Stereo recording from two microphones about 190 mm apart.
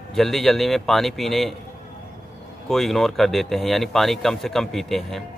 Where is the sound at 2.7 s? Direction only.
Centre (ahead or behind).